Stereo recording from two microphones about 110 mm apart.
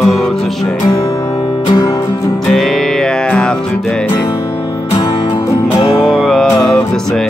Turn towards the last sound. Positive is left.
turn(degrees=0)  # may be behind; listen again after turning